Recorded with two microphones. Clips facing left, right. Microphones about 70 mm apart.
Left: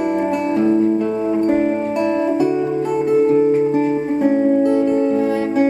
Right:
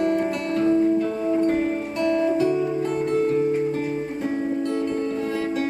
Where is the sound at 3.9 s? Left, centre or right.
Left.